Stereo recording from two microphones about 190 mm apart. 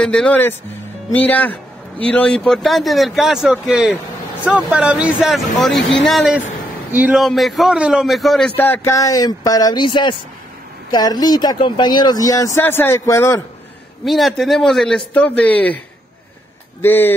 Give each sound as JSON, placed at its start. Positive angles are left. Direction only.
{"t": 0.0, "sound": "a man's voice", "side_deg": 5}
{"t": 8.5, "sound": "speech", "side_deg": 10}
{"t": 14.0, "sound": "a man's voice", "side_deg": 0}
{"t": 16.8, "sound": "speech", "side_deg": 10}